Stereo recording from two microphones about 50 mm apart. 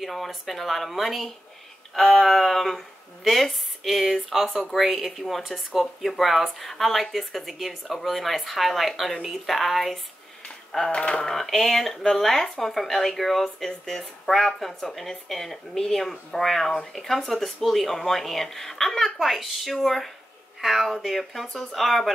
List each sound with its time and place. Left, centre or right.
0.0 s a woman's voice: centre
10.9 s speech: left
11.2 s a woman's voice: centre